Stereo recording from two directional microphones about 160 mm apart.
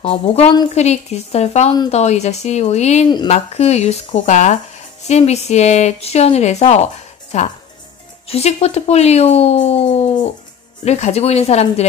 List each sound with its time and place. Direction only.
0.0 s speech: 35° left (ahead or behind)